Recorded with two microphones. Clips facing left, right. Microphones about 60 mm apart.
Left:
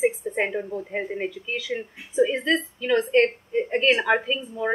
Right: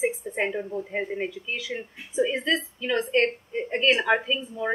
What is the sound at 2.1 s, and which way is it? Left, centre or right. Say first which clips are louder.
A woman's voice: left 3 dB; left.